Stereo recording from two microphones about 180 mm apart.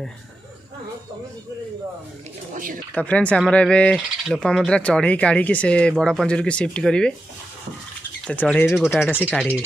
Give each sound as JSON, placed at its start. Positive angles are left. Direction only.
{"t": 2.5, "sound": "speech", "side_deg": -50}
{"t": 2.9, "sound": "speech", "side_deg": 5}
{"t": 8.3, "sound": "speech", "side_deg": 10}